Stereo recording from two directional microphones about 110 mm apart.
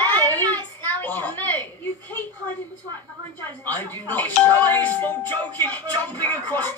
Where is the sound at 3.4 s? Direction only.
15° left (ahead or behind).